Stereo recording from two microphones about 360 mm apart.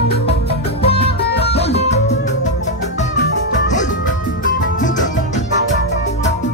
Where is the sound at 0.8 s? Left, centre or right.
Centre.